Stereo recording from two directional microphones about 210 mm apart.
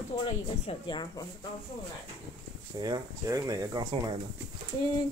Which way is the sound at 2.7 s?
20° right (ahead or behind).